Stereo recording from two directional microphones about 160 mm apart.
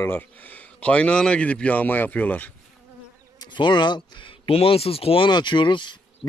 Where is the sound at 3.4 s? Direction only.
30° left (ahead or behind).